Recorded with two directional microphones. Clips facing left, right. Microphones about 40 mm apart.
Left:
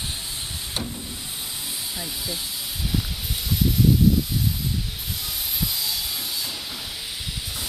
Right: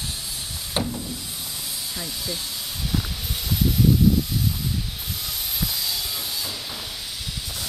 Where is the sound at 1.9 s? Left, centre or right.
Centre.